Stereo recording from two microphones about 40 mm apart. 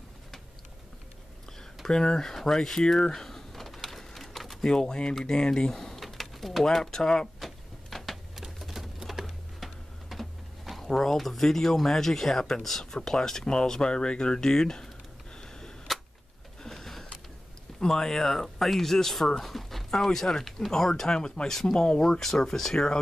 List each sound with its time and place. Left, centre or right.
1.9 s a sound: centre
5.1 s speech: centre
5.9 s pigeon: centre
6.6 s speech: centre
7.3 s a sound: centre
8.4 s typing: centre
10.9 s speech: centre
15.4 s a sound: centre
17.7 s speech: centre
21.5 s speech: centre